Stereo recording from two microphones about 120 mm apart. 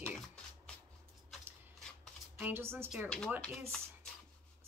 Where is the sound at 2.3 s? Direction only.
20° right (ahead or behind).